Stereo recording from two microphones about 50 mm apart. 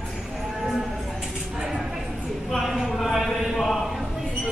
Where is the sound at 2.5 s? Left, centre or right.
Centre.